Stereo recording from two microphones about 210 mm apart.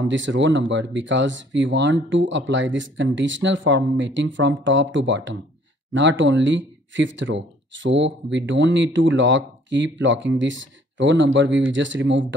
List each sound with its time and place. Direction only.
0.1 s speech: 60° right (ahead or behind)